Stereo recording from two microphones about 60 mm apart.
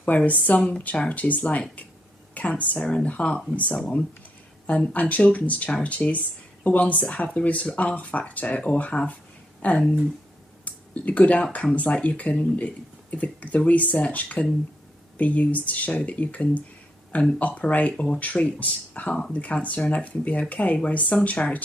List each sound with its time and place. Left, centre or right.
0.0 s speech: left
5.7 s speech: centre
5.9 s speech: left
10.6 s a sound: left
11.5 s speech: left